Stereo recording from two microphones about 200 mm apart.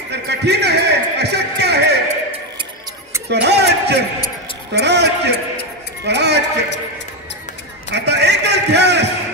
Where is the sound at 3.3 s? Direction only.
55° right (ahead or behind).